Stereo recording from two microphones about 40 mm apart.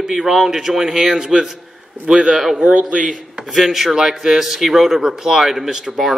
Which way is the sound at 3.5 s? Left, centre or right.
Centre.